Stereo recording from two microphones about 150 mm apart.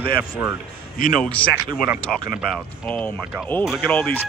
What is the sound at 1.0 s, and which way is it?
Speech, 65° left (ahead or behind).